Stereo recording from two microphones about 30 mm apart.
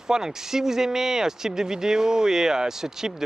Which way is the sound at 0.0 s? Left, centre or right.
Centre.